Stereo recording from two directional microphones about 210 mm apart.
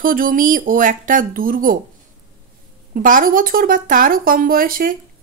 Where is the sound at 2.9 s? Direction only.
40° right (ahead or behind).